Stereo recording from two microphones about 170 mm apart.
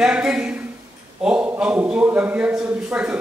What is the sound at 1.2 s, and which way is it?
A woman's voice, 5° right (ahead or behind).